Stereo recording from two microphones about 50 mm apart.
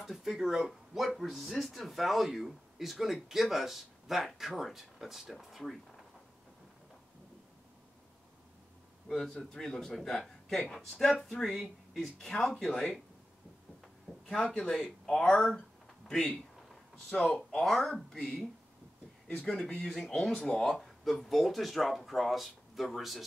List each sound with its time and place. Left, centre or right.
0.0 s speech: centre
9.1 s speech: centre
14.3 s speech: centre
19.2 s speech: left
19.5 s speech: centre